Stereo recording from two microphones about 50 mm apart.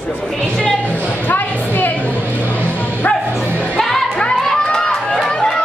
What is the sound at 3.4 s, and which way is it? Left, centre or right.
Music, right.